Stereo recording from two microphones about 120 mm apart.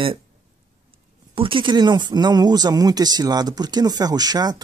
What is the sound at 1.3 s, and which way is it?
Speech, 45° right (ahead or behind).